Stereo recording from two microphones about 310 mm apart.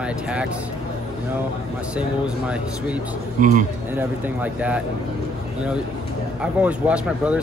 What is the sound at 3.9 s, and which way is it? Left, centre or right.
Speech, centre.